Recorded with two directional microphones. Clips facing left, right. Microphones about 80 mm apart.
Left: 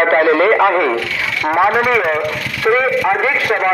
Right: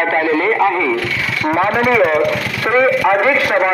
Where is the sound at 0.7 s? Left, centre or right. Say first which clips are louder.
Left 2 dB; left.